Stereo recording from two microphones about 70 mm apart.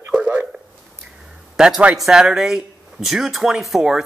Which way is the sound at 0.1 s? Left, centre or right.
Centre.